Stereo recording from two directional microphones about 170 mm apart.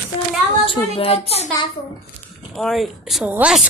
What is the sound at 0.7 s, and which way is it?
Speech, 35° left (ahead or behind).